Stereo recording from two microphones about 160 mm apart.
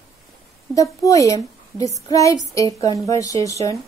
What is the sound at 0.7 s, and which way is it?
A woman's voice, 20° left (ahead or behind).